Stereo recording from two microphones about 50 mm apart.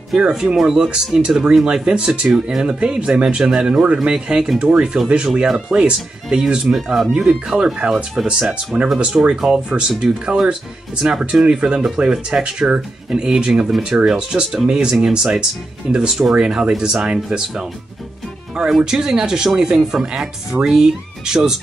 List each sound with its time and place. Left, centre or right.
0.3 s speech: centre
6.7 s speech: centre
18.7 s speech: centre
20.5 s speech: right
21.3 s speech: centre